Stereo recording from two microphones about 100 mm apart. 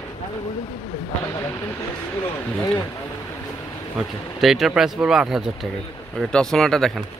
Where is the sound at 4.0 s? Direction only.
Centre (ahead or behind).